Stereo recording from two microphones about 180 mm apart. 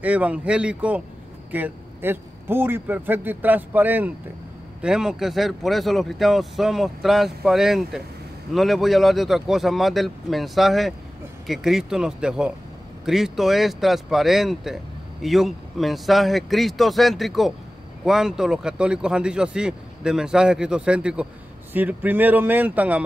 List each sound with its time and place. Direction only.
0.0 s a man's voice: 10° right (ahead or behind)